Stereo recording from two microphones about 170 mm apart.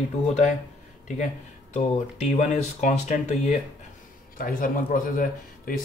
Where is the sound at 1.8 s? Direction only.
40° left (ahead or behind).